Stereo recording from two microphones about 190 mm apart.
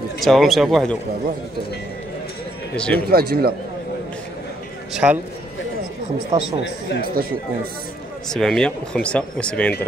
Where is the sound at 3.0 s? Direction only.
55° right (ahead or behind).